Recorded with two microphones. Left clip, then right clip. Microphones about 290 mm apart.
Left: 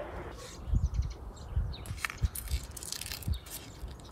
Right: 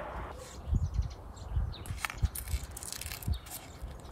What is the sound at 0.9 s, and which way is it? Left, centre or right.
Bird, centre.